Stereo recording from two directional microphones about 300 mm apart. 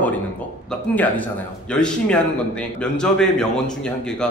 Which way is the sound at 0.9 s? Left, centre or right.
Centre.